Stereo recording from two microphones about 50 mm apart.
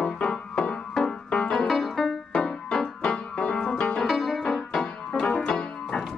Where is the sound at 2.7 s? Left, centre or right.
Centre.